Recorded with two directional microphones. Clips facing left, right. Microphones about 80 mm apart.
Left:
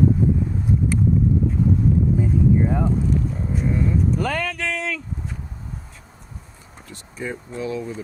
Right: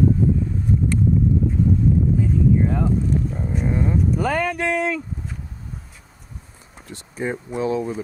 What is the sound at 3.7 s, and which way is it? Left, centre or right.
Speech, right.